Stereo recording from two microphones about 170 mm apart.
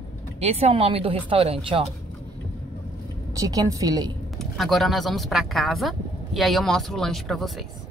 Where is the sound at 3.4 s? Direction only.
20° right (ahead or behind).